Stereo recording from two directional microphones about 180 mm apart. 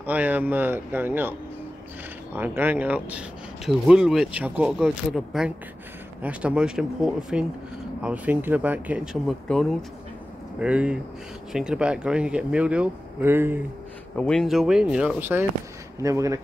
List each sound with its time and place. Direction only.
0.0 s speech: 10° right (ahead or behind)
2.3 s speech: 10° right (ahead or behind)
14.1 s speech: 5° left (ahead or behind); by 16.3 s 15° right (ahead or behind)